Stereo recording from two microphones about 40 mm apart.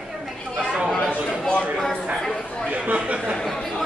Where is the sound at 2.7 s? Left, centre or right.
Right.